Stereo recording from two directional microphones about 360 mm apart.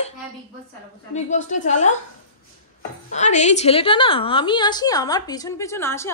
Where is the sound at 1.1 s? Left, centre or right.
Centre.